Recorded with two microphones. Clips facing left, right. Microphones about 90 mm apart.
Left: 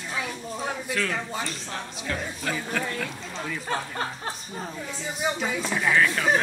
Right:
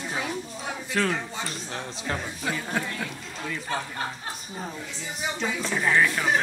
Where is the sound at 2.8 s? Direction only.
15° right (ahead or behind).